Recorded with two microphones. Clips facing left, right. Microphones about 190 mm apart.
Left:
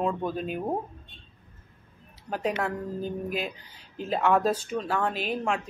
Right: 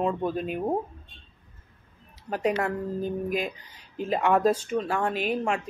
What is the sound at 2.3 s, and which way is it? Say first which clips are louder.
Speech: right 3 dB; 5° right (ahead or behind).